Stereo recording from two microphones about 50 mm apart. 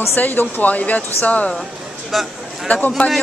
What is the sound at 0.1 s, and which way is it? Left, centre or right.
Speech, left.